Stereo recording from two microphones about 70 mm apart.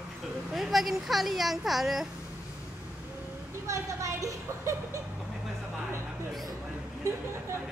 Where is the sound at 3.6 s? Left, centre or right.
Right.